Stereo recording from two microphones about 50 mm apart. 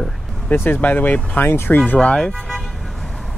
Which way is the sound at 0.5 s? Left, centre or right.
Left.